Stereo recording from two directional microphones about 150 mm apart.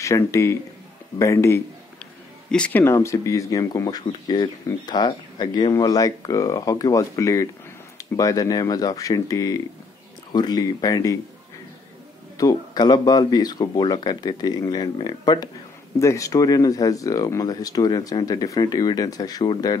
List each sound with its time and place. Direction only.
0.0 s speech: 20° left (ahead or behind)
2.5 s speech: 5° left (ahead or behind)
2.8 s speech: 20° left (ahead or behind)
12.4 s speech: 25° left (ahead or behind)